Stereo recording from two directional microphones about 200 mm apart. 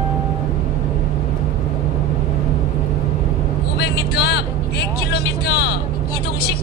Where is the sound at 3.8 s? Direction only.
55° left (ahead or behind).